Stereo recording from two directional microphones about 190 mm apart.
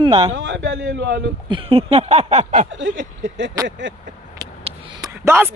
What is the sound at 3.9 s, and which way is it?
Speech, 75° right (ahead or behind).